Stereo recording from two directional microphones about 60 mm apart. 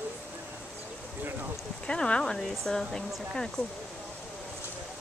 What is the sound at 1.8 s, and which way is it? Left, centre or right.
Speech, centre.